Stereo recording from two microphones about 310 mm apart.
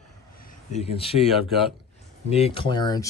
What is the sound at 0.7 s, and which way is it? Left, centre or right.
Speech, centre.